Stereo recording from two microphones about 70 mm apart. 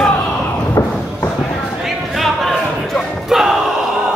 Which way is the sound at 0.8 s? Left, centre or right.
Left.